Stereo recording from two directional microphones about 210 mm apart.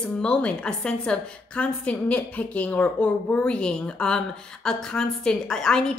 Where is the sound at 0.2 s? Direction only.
5° left (ahead or behind).